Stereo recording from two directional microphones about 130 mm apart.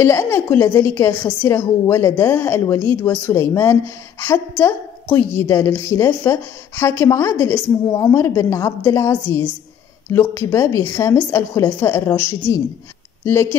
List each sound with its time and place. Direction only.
0.0 s a woman's voice: 20° left (ahead or behind)
13.2 s a woman's voice: 20° left (ahead or behind)